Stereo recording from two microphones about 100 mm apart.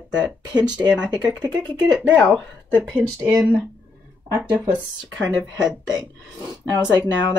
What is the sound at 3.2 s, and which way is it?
Speech, 35° right (ahead or behind).